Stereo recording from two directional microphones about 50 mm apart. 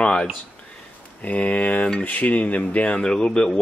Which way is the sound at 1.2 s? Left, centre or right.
Left.